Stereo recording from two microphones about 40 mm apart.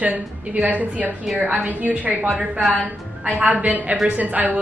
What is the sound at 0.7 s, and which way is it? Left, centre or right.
Speech, right.